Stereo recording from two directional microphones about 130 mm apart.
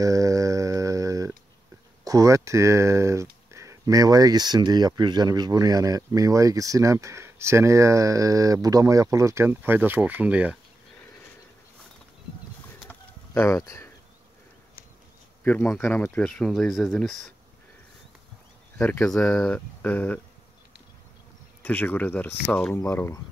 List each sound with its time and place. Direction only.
0.0 s mantra: 25° right (ahead or behind)
2.0 s speech: 25° right (ahead or behind); by 10.6 s 10° right (ahead or behind)
12.8 s a sound: 20° left (ahead or behind)
15.4 s speech: 10° left (ahead or behind)
18.8 s speech: 15° left (ahead or behind)
19.0 s speech: 5° left (ahead or behind)
21.6 s speech: 10° left (ahead or behind)
22.8 s speech: 20° left (ahead or behind)